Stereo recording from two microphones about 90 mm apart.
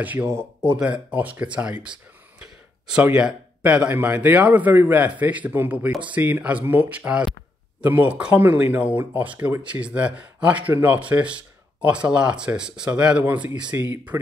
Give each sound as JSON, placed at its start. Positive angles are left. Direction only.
{"t": 0.0, "sound": "a man's voice", "side_deg": -20}
{"t": 14.1, "sound": "speech", "side_deg": -30}